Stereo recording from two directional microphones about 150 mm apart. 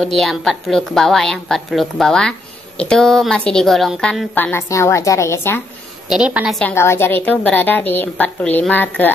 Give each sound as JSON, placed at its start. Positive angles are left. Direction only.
{"t": 0.0, "sound": "a woman's voice", "side_deg": 0}
{"t": 4.5, "sound": "a woman's voice", "side_deg": 20}
{"t": 6.0, "sound": "a woman's voice", "side_deg": -5}
{"t": 6.6, "sound": "a woman's voice", "side_deg": 15}